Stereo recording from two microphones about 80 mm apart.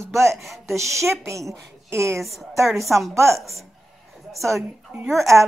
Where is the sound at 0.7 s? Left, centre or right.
Right.